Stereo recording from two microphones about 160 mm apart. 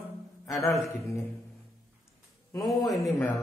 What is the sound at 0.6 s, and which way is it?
Speech, 20° left (ahead or behind).